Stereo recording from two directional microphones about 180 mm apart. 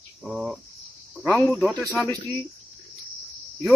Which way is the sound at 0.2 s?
Centre (ahead or behind).